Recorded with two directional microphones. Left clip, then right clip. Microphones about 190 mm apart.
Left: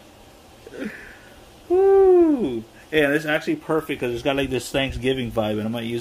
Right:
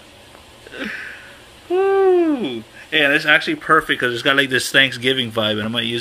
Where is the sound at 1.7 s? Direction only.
15° left (ahead or behind).